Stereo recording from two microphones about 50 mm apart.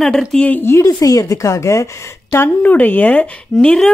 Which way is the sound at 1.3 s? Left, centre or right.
Left.